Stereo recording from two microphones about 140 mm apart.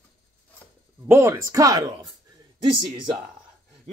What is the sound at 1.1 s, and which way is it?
A man's voice, 20° right (ahead or behind).